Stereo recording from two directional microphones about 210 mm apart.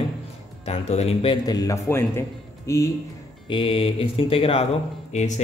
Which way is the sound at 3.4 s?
25° left (ahead or behind).